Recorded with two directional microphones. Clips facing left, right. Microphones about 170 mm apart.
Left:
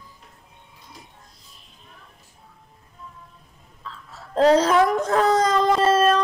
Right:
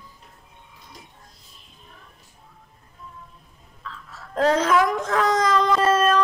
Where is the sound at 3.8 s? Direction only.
30° left (ahead or behind).